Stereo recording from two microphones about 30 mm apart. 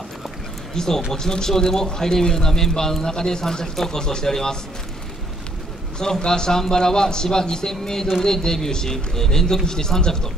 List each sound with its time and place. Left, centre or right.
0.7 s speech: centre
5.9 s speech: left